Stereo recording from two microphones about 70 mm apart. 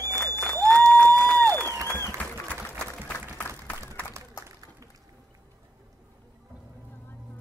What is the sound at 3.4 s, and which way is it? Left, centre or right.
Applause, left.